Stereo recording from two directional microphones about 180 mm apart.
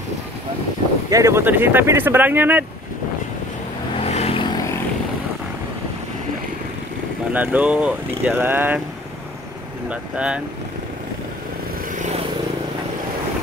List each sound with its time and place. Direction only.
1.1 s speech: 15° right (ahead or behind)
3.9 s vehicle: 35° left (ahead or behind)
7.3 s speech: 5° right (ahead or behind)
9.8 s speech: 5° right (ahead or behind)